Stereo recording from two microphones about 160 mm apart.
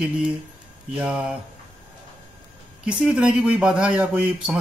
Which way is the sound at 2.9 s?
5° right (ahead or behind).